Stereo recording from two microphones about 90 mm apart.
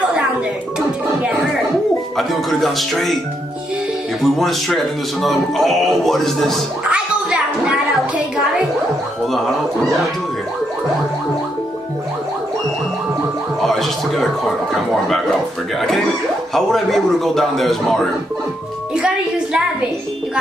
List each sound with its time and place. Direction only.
2.1 s a man's voice: centre (ahead or behind)
4.2 s a man's voice: centre (ahead or behind)
6.9 s music: 10° right (ahead or behind)
9.2 s a man's voice: centre (ahead or behind)
13.6 s speech: centre (ahead or behind)
16.5 s a man's voice: centre (ahead or behind)
18.9 s music: 10° right (ahead or behind)